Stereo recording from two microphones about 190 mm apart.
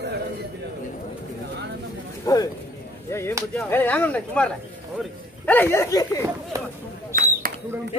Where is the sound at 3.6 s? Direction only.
10° left (ahead or behind).